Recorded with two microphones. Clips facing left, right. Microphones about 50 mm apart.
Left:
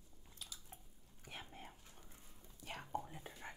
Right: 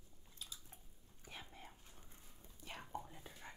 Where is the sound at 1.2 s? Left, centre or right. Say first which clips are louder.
Left 2 dB; left.